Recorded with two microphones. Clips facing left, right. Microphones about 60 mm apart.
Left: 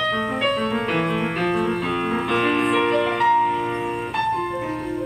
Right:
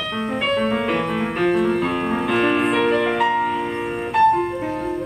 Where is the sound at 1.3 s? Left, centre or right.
Centre.